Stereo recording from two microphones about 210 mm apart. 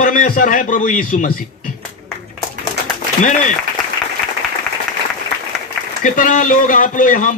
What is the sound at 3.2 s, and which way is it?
Speech, 35° left (ahead or behind).